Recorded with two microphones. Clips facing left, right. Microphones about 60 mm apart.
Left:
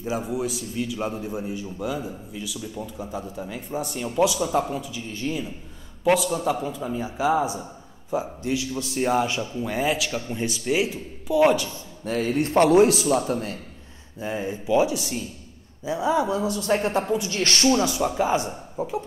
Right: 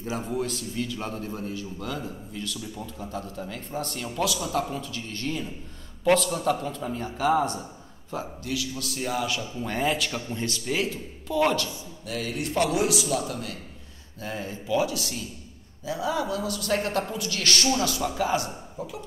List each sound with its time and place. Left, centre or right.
0.0 s a man's voice: centre
8.1 s speech: left
9.6 s a man's voice: centre
10.3 s a man's voice: centre
12.0 s a man's voice: left
14.2 s speech: centre